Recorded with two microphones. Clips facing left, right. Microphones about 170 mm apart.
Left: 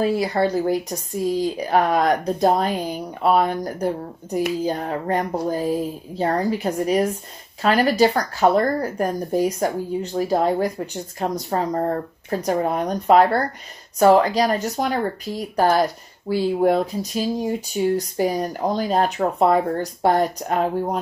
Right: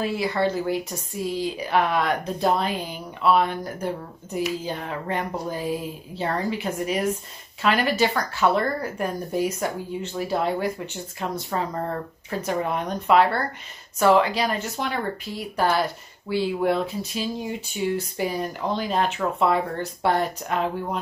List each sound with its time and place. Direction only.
0.0 s speech: 40° left (ahead or behind)